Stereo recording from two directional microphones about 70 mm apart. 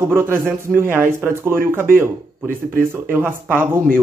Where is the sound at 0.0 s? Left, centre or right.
Right.